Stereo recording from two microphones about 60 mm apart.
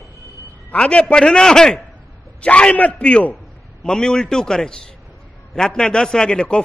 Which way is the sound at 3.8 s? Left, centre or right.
Centre.